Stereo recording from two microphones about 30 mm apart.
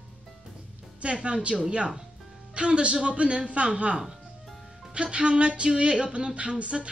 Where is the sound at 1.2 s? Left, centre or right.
Right.